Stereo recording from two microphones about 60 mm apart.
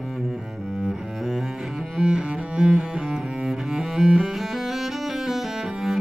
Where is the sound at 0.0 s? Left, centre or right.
Centre.